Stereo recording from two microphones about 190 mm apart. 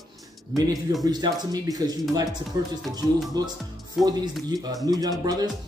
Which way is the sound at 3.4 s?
20° right (ahead or behind).